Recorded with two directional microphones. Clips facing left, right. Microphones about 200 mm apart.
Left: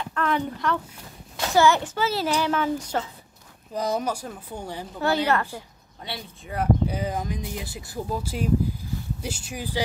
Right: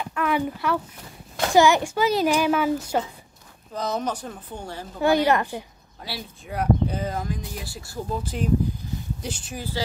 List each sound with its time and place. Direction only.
0.0 s a sound: 10° right (ahead or behind)
1.5 s a child's voice: 15° right (ahead or behind)
3.7 s speech: 10° left (ahead or behind)
5.0 s a child's voice: 15° right (ahead or behind)
6.0 s speech: centre (ahead or behind)
7.0 s speech: 15° left (ahead or behind)
8.1 s speech: 5° left (ahead or behind)